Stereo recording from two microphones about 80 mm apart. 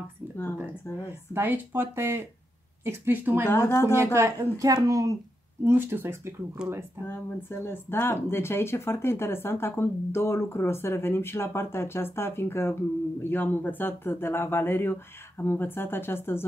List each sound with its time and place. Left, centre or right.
1.3 s speech: right
3.4 s speech: left
3.9 s speech: right
5.6 s speech: right
7.1 s speech: left